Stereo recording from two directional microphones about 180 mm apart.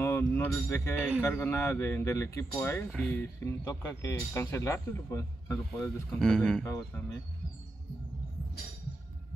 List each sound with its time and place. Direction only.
0.0 s speech: 15° left (ahead or behind)
6.1 s speech: 5° left (ahead or behind)